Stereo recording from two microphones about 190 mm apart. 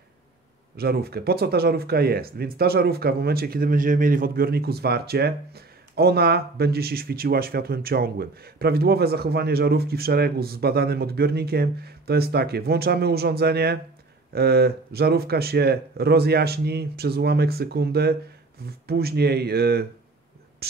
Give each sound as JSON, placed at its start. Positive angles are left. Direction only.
{"t": 0.7, "sound": "speech", "side_deg": -55}